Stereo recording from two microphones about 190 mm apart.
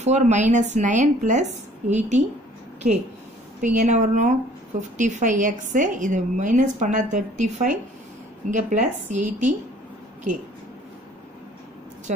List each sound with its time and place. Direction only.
0.0 s a woman's voice: 35° right (ahead or behind)
3.6 s a woman's voice: 40° right (ahead or behind)